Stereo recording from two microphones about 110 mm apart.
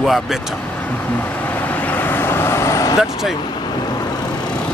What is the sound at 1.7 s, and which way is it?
Vehicle, 15° left (ahead or behind).